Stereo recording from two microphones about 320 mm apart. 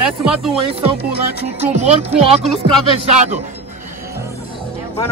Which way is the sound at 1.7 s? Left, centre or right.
Centre.